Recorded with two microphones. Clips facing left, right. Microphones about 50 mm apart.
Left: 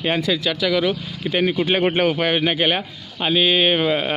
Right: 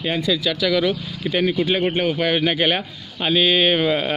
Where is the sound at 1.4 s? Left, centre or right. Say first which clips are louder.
Left 1 dB; left.